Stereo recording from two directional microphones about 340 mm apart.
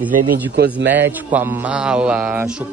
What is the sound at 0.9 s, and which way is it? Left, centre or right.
Speech, centre.